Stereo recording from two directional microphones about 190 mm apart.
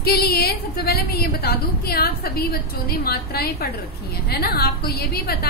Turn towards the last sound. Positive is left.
turn(degrees=55)  # may be behind; listen again after turning